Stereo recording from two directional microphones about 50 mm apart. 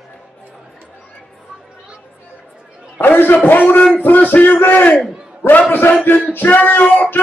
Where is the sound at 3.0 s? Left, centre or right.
Left.